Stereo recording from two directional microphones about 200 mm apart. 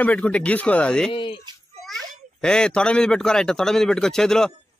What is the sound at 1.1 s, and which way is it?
Speech, 25° left (ahead or behind).